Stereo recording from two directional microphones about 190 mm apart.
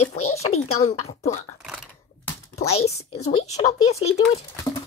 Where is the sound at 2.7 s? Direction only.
35° left (ahead or behind).